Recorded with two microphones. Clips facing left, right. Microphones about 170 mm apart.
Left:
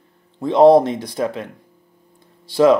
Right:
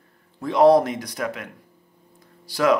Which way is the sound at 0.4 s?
25° left (ahead or behind).